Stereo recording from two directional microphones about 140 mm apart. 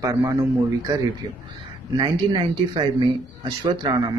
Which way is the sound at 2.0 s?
30° right (ahead or behind).